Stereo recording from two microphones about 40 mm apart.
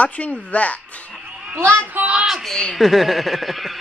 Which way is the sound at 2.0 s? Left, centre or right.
Right.